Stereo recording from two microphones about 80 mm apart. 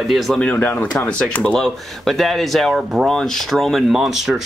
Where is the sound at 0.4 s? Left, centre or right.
Left.